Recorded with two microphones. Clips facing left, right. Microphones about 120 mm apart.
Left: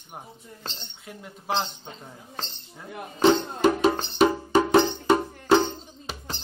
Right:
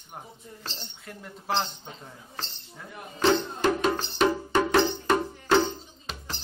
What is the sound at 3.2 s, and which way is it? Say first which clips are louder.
Music: left 4 dB; 20° left (ahead or behind).